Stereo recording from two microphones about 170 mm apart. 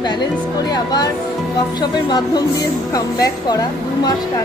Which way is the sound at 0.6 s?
25° left (ahead or behind).